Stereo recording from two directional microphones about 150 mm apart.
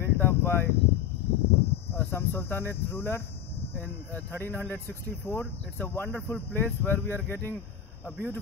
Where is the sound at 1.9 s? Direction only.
15° left (ahead or behind).